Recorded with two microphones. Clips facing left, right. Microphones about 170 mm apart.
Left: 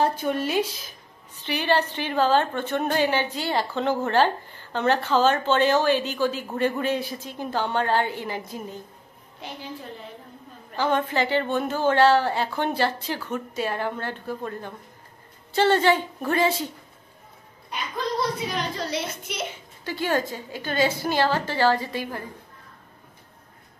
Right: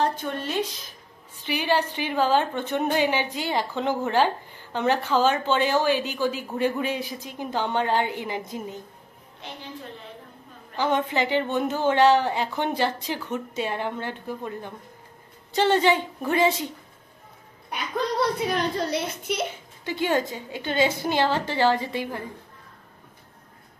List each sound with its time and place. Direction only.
0.0 s a sound: 5° left (ahead or behind)
1.4 s a woman's voice: 10° right (ahead or behind)
10.8 s a woman's voice: 15° right (ahead or behind)
18.5 s a child's voice: 55° right (ahead or behind)
19.8 s a woman's voice: 20° right (ahead or behind)